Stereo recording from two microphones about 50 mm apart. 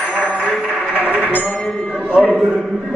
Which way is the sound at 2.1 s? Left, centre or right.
Right.